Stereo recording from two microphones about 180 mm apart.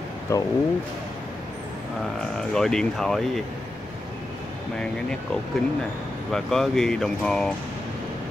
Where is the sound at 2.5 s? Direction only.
5° left (ahead or behind).